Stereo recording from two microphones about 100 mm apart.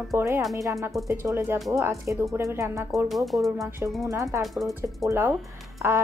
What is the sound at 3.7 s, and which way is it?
Speech, 25° right (ahead or behind).